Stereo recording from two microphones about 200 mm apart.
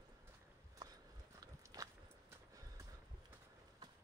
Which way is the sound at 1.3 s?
15° right (ahead or behind).